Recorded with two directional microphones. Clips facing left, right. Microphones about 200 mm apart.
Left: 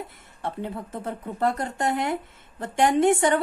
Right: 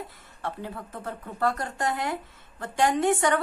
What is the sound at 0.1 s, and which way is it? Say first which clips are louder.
A woman's voice: left 2 dB; 20° left (ahead or behind).